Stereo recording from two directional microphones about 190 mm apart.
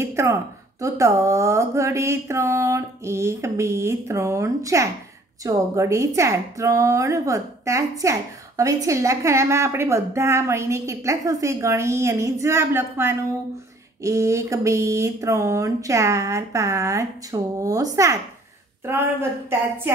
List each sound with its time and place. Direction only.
0.0 s a woman's voice: 15° right (ahead or behind)